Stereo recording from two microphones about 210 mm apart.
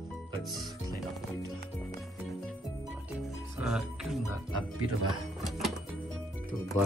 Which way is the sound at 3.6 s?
Centre (ahead or behind).